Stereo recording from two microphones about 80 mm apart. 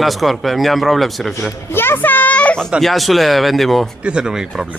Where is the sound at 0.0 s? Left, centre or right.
Centre.